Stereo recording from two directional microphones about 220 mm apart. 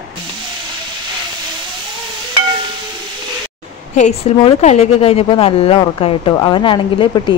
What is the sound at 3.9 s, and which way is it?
A woman's voice, 30° left (ahead or behind).